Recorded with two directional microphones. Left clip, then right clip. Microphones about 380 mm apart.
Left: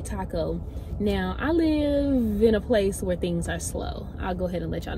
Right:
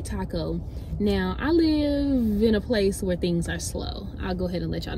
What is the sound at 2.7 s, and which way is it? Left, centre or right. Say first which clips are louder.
Speech: left 1 dB; centre.